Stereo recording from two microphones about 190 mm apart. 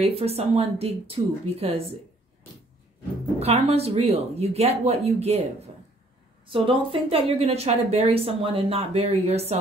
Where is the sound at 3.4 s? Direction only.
35° right (ahead or behind).